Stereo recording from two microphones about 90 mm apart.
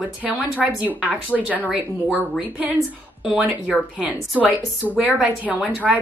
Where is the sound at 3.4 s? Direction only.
15° right (ahead or behind).